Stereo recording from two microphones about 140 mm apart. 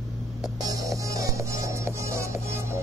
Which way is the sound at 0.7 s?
25° right (ahead or behind).